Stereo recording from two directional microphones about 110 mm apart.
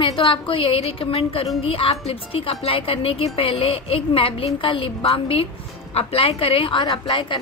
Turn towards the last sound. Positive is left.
turn(degrees=50)  # may be behind; listen again after turning